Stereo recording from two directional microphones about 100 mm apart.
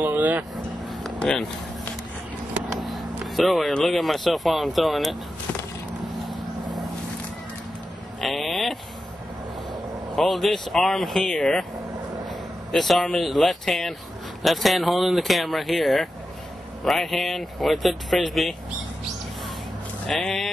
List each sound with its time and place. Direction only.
0.0 s vehicle: 20° right (ahead or behind)
1.0 s a sound: 10° left (ahead or behind)
2.7 s speech: centre (ahead or behind)
8.2 s a sound: centre (ahead or behind)
10.1 s speech: centre (ahead or behind)
12.7 s speech: centre (ahead or behind)
20.1 s speech: centre (ahead or behind)